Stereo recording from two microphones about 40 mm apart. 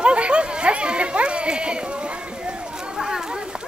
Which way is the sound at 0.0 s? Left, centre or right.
Right.